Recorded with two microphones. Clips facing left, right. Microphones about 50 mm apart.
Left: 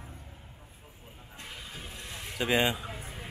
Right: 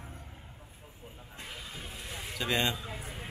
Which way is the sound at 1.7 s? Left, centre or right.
Centre.